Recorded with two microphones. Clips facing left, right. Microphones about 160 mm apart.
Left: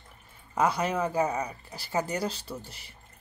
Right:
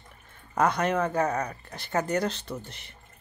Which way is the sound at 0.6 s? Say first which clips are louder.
Right 2 dB; 5° left (ahead or behind).